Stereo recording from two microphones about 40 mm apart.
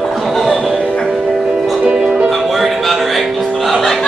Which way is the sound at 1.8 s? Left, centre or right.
Right.